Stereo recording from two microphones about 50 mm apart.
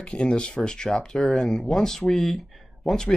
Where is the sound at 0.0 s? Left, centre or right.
Centre.